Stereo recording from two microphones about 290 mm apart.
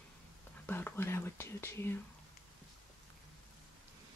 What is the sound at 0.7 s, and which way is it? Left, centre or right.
Speech, centre.